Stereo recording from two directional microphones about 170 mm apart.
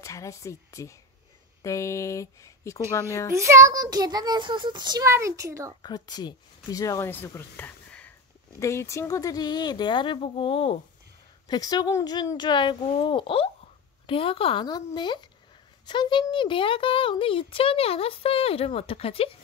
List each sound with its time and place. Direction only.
0.0 s speech: 20° left (ahead or behind)
3.3 s a child's voice: 15° right (ahead or behind)
5.8 s a child's voice: 25° left (ahead or behind)